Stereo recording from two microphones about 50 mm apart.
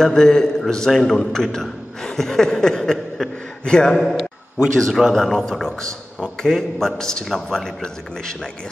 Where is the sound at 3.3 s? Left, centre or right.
Centre.